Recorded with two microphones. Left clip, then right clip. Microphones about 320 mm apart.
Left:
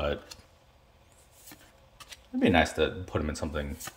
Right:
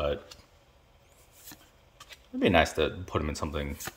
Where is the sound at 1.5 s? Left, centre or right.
Centre.